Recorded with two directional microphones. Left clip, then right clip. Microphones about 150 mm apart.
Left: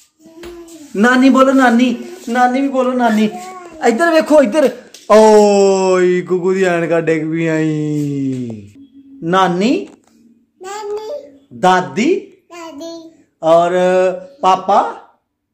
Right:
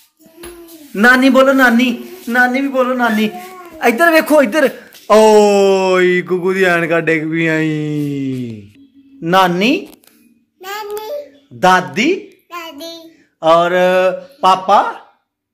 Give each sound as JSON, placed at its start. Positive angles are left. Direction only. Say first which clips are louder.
{"t": 0.9, "sound": "speech", "louder": "right 2 dB", "side_deg": 0}
{"t": 2.7, "sound": "speech", "louder": "even", "side_deg": 15}
{"t": 3.7, "sound": "speech", "louder": "right 1 dB", "side_deg": -10}
{"t": 9.2, "sound": "speech", "louder": "right 2 dB", "side_deg": -15}
{"t": 10.6, "sound": "child singing", "louder": "even", "side_deg": 20}
{"t": 11.6, "sound": "speech", "louder": "right 1 dB", "side_deg": -15}
{"t": 12.4, "sound": "child singing", "louder": "right 1 dB", "side_deg": 20}
{"t": 13.4, "sound": "speech", "louder": "even", "side_deg": -10}